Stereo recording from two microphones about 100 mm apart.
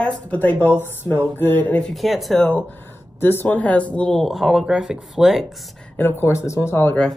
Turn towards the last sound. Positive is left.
turn(degrees=25)  # may be behind; listen again after turning